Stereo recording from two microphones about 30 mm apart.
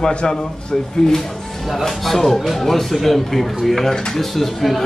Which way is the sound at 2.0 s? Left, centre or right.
Centre.